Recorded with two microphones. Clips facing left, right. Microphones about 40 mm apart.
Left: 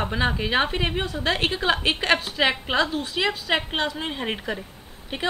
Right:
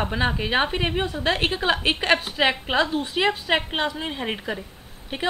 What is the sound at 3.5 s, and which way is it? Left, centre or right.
A woman's voice, centre.